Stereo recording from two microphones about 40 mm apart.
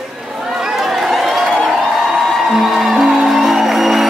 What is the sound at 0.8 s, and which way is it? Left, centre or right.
Run, centre.